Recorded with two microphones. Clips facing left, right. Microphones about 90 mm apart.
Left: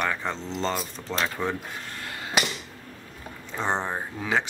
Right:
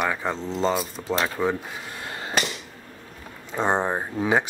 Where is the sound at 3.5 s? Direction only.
15° right (ahead or behind).